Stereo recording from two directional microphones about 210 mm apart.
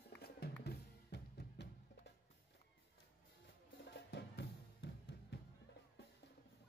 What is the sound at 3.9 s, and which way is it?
Music, 55° left (ahead or behind).